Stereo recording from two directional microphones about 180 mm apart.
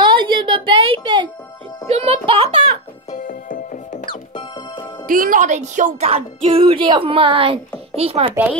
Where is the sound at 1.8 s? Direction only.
35° right (ahead or behind).